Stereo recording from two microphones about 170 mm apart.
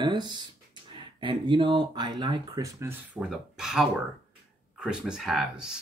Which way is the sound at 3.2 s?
5° right (ahead or behind).